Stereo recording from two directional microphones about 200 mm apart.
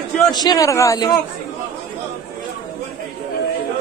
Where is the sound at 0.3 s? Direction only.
20° left (ahead or behind).